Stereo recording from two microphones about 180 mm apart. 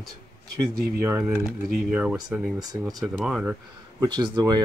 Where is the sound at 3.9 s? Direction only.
25° right (ahead or behind).